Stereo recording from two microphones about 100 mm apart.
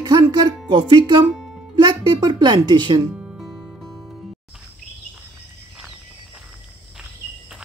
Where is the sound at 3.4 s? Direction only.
Centre (ahead or behind).